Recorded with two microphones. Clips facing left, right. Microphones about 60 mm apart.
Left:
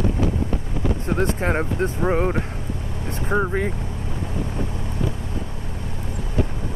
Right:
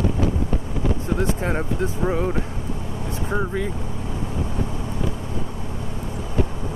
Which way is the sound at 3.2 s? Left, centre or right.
Left.